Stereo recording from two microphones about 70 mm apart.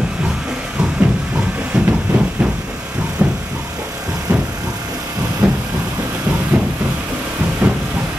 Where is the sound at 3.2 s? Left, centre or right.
Centre.